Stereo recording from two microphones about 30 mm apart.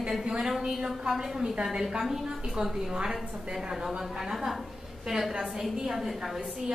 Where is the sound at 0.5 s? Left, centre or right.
Centre.